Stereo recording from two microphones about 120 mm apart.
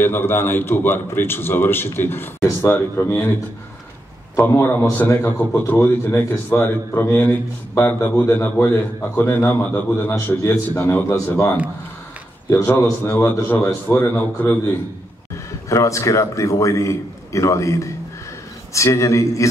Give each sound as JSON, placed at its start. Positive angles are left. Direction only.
{"t": 0.0, "sound": "a man's voice", "side_deg": 15}
{"t": 4.4, "sound": "a man's voice", "side_deg": 20}
{"t": 15.7, "sound": "a man's voice", "side_deg": 25}